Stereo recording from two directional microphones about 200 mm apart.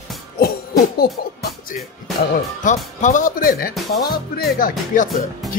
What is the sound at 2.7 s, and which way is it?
Speech, 40° left (ahead or behind).